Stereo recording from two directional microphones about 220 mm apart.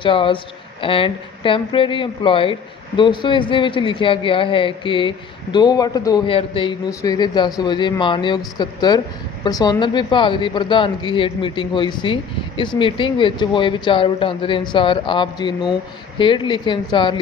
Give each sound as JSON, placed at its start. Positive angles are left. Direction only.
{"t": 0.0, "sound": "a woman's voice", "side_deg": 25}